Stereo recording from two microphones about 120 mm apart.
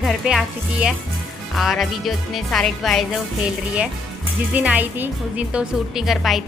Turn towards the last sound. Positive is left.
turn(degrees=0)  # may be behind; listen again after turning